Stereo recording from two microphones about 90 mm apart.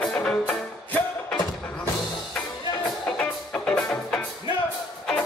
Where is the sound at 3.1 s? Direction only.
10° left (ahead or behind).